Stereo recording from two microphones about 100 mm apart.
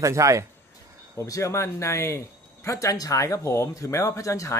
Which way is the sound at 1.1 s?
30° left (ahead or behind).